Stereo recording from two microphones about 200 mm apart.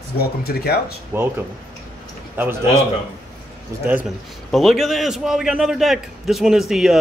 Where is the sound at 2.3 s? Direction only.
10° right (ahead or behind).